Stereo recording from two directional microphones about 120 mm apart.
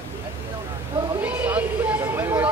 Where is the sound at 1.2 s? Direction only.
15° right (ahead or behind).